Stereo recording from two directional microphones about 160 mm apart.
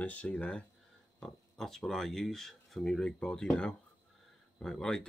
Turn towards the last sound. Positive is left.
turn(degrees=5)  # may be behind; listen again after turning